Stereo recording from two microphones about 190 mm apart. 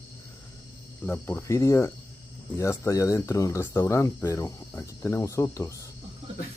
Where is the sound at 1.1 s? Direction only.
10° left (ahead or behind).